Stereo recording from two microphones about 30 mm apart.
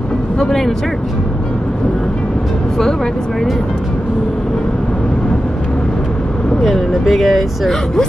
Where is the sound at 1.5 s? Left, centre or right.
Left.